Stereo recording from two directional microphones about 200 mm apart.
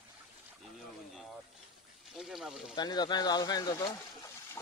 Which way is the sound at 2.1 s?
Centre (ahead or behind).